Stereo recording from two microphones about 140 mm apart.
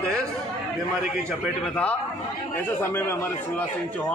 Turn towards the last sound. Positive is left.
turn(degrees=15)  # may be behind; listen again after turning